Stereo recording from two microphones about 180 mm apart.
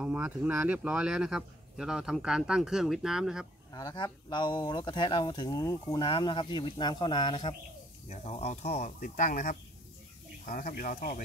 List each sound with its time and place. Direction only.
0.0 s speech: 5° right (ahead or behind)
3.7 s speech: 25° left (ahead or behind)
8.1 s speech: 40° left (ahead or behind)